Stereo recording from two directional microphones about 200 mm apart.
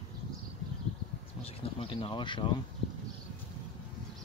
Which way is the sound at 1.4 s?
30° left (ahead or behind).